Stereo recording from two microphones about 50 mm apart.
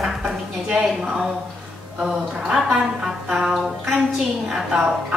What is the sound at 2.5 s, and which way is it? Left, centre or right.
A woman's voice, centre.